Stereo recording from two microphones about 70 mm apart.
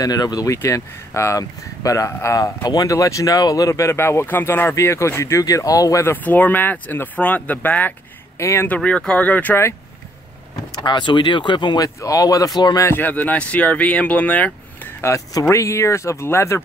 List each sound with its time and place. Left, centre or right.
0.0 s speech: left
0.5 s speech: left
2.6 s speech: left
2.9 s speech: left
4.7 s speech: left
5.4 s speech: left
6.2 s speech: left
8.4 s speech: left
8.6 s speech: centre
10.7 s speech: left
12.0 s speech: left
12.9 s speech: left
15.0 s speech: left